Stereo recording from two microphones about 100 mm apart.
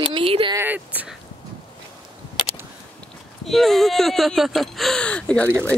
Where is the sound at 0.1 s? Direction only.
65° right (ahead or behind).